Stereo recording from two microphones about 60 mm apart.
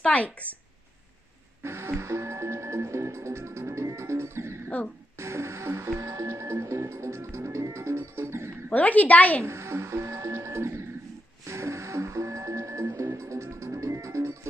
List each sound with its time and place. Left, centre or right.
0.0 s a woman's voice: left
1.6 s music: right
8.7 s a woman's voice: left
9.4 s music: right